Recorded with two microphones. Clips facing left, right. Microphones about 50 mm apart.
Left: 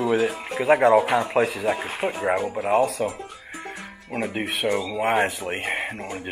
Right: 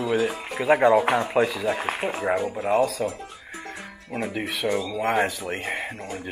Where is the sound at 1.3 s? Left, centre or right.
Left.